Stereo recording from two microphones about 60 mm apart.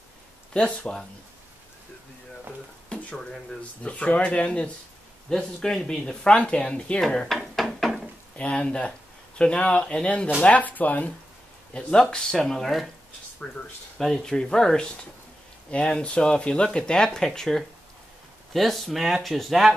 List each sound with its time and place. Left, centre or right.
0.5 s speech: centre
3.8 s speech: left
7.3 s a sound: centre
8.4 s speech: centre
11.7 s speech: centre